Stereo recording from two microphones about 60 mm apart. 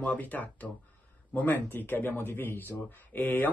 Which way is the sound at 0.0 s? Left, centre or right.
Left.